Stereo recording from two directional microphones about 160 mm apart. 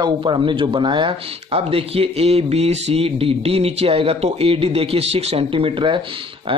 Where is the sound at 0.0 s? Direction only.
30° right (ahead or behind).